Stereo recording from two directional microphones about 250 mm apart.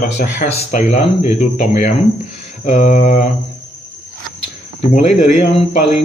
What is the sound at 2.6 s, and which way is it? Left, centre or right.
Speech, left.